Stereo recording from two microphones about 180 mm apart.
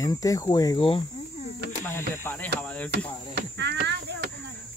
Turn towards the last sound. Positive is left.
turn(degrees=-70)  # may be behind; listen again after turning